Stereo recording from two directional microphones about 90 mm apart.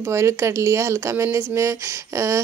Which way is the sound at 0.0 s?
35° right (ahead or behind).